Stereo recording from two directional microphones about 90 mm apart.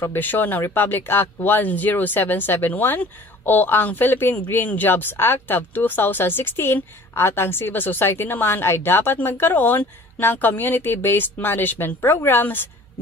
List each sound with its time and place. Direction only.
0.0 s speech: 20° left (ahead or behind)